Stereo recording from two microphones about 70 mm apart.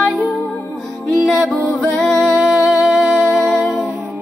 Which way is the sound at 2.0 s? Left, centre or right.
Centre.